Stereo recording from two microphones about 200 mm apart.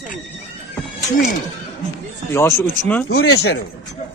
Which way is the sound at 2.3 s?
10° left (ahead or behind).